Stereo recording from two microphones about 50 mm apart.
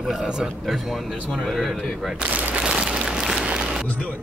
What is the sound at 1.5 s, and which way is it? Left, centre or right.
Speech, centre.